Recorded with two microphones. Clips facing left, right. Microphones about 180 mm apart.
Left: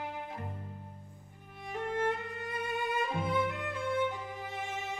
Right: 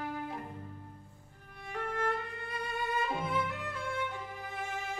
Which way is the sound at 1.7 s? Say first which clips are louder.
Left 2 dB; 20° left (ahead or behind).